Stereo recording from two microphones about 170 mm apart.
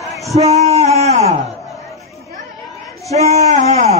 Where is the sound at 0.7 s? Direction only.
40° right (ahead or behind).